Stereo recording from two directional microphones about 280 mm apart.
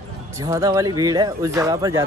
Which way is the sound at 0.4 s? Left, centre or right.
Centre.